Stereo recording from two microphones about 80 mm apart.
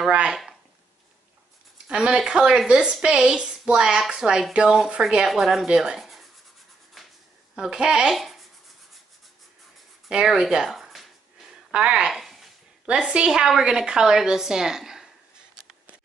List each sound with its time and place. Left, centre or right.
0.1 s a woman's voice: centre
1.9 s a woman's voice: centre
7.0 s a sound: centre
7.5 s speech: centre
10.0 s speech: centre
11.7 s a woman's voice: centre